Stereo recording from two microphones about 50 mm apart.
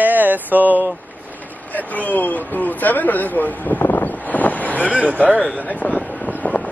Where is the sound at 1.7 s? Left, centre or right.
Left.